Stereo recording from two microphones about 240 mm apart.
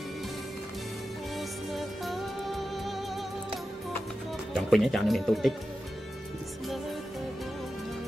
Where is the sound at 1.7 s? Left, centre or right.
Centre.